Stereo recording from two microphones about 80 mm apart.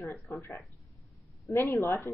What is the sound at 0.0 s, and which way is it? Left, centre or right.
A woman's voice, left.